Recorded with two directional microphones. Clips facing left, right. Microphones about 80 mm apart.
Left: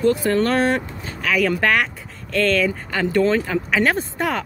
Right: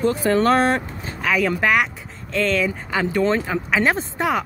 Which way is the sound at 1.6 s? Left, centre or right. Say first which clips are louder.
Even; centre.